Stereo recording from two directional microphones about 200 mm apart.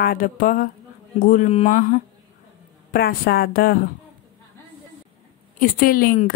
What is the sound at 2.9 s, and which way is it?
Speech, 50° left (ahead or behind).